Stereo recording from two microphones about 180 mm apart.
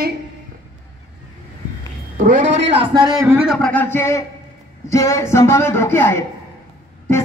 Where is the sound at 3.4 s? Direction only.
5° left (ahead or behind).